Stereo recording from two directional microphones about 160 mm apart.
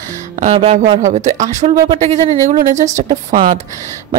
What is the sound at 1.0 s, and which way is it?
Speech, 45° right (ahead or behind).